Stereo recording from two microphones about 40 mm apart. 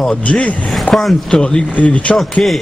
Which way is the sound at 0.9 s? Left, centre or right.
Left.